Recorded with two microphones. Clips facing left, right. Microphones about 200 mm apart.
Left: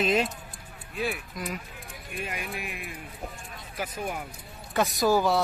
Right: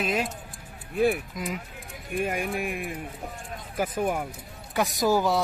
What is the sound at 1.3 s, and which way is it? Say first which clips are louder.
Speech: right 2 dB; 20° right (ahead or behind).